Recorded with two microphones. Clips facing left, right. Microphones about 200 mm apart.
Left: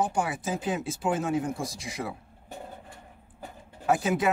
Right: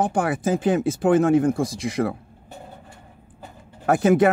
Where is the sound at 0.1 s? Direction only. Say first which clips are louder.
Right 7 dB; 55° right (ahead or behind).